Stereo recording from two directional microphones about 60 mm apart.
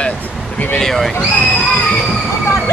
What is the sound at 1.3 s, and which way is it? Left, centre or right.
Speech, left.